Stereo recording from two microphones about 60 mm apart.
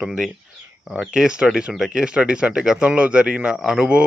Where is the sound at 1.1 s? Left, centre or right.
Centre.